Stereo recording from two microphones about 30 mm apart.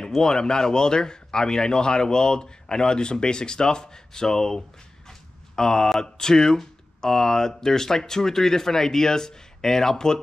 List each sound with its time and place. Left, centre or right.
0.2 s speech: left